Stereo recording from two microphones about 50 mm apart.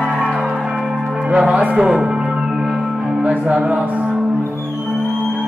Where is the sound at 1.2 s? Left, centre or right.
Right.